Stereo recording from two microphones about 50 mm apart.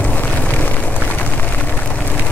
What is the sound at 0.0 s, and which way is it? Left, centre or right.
Vehicle, left.